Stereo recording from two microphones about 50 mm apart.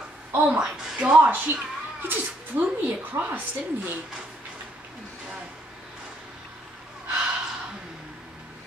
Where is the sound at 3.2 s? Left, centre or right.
Right.